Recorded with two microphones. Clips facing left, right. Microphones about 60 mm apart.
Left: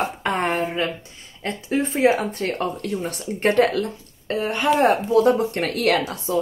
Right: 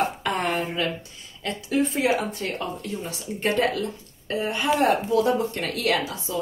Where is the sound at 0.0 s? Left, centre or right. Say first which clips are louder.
Left 2 dB; left.